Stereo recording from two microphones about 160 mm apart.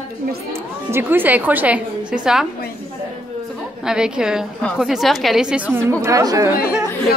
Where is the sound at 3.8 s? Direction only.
5° right (ahead or behind).